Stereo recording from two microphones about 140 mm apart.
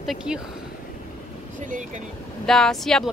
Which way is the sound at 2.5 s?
5° left (ahead or behind).